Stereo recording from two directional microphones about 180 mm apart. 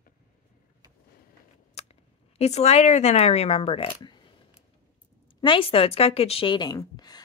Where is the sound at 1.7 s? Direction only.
35° left (ahead or behind).